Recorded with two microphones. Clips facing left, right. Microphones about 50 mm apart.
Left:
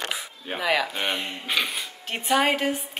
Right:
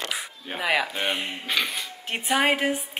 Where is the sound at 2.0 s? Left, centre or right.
Centre.